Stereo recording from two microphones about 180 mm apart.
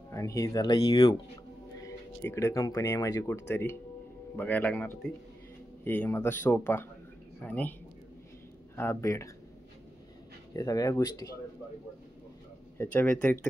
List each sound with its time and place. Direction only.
0.1 s speech: 15° left (ahead or behind)
1.8 s speech: 15° left (ahead or behind)
8.7 s speech: 15° left (ahead or behind)
10.5 s speech: 20° left (ahead or behind)
12.7 s speech: 10° left (ahead or behind)